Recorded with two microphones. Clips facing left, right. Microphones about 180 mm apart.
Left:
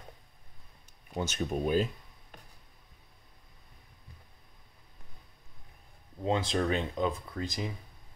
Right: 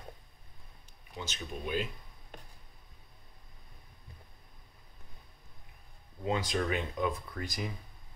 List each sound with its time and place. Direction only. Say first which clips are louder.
1.1 s speech: left 9 dB; 50° left (ahead or behind)
6.2 s speech: left 3 dB; 30° left (ahead or behind)